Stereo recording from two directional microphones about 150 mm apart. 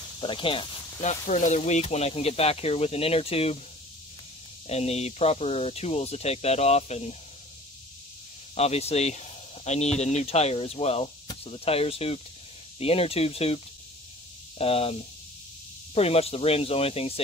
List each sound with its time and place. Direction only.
0.2 s speech: 35° left (ahead or behind)
1.0 s speech: 55° left (ahead or behind)
4.6 s speech: 45° left (ahead or behind)
8.5 s speech: 45° left (ahead or behind)
14.6 s speech: 40° left (ahead or behind)